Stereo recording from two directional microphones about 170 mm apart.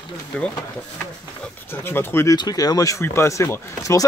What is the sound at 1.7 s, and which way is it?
Speech, 15° left (ahead or behind).